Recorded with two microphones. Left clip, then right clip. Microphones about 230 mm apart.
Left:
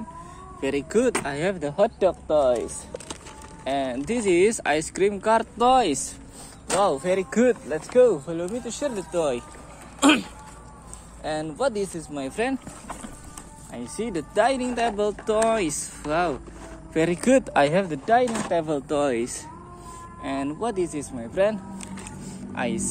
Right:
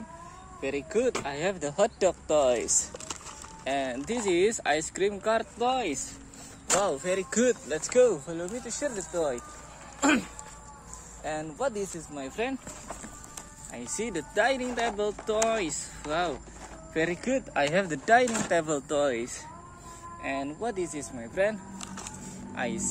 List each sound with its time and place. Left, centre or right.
0.6 s speech: centre
1.2 s speech: centre
3.6 s speech: centre
5.6 s speech: left
6.7 s speech: centre
7.4 s speech: centre
8.0 s speech: centre
11.2 s speech: centre
13.7 s speech: centre; by 17.6 s left
17.7 s speech: centre
18.9 s speech: centre